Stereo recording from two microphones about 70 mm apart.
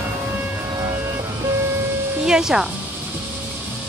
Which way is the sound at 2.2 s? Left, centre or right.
Centre.